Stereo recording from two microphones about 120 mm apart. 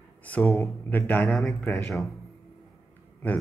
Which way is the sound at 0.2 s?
10° left (ahead or behind).